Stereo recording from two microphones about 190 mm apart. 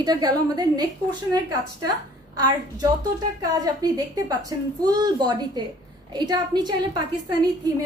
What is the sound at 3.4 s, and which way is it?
A woman's voice, 20° right (ahead or behind).